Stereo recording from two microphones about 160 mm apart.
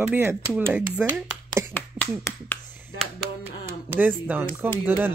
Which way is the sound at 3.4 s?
10° right (ahead or behind).